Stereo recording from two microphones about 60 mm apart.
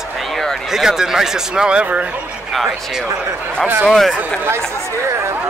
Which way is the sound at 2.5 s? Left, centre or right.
Centre.